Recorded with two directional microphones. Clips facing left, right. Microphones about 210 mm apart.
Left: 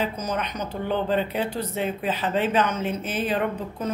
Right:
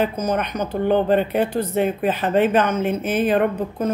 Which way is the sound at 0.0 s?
55° right (ahead or behind).